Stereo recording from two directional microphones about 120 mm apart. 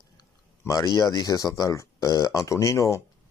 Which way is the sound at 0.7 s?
30° left (ahead or behind).